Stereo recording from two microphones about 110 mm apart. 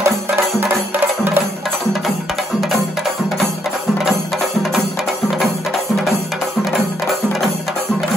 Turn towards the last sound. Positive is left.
turn(degrees=0)  # may be behind; listen again after turning